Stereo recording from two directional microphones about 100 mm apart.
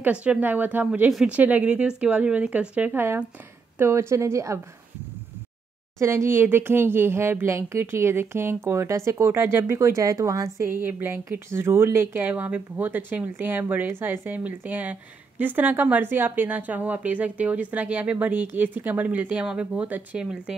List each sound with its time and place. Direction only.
0.0 s a woman's voice: 10° right (ahead or behind); by 4.6 s 30° right (ahead or behind)
5.9 s speech: 30° right (ahead or behind)
10.8 s a woman's voice: 20° right (ahead or behind)